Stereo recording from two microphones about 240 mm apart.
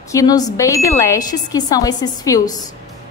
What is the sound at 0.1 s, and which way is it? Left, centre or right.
A woman's voice, centre.